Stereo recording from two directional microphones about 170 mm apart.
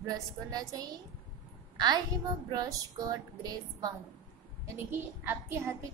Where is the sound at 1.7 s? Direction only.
25° right (ahead or behind).